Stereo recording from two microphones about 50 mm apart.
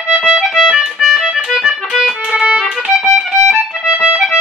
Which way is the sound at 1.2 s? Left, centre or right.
Centre.